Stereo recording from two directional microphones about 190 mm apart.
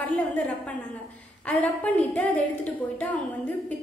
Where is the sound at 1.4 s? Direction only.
5° left (ahead or behind).